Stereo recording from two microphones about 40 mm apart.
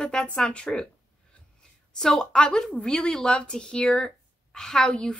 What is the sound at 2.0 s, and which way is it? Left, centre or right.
A woman's voice, centre.